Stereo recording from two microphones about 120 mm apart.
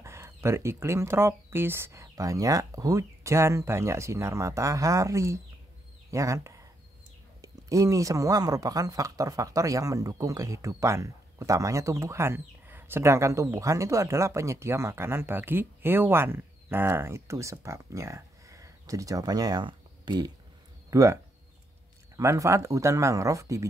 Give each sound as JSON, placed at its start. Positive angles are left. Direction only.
{"t": 0.0, "sound": "speech", "side_deg": -25}